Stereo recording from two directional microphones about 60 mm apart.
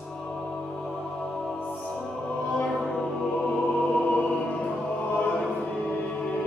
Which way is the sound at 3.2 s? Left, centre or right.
Centre.